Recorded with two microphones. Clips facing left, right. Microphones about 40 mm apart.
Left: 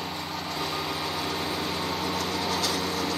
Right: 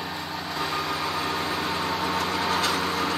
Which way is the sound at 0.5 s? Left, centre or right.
Centre.